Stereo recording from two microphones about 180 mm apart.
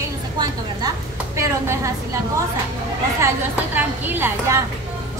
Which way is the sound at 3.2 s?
15° right (ahead or behind).